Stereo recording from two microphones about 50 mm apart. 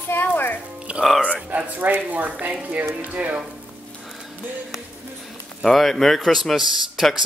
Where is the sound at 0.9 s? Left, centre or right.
Right.